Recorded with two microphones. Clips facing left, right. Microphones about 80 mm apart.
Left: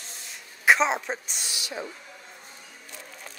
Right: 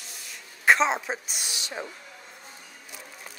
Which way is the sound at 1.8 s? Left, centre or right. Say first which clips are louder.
Left 1 dB; right.